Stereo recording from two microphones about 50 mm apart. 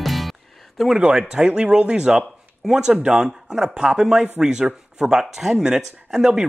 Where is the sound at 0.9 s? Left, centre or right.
Centre.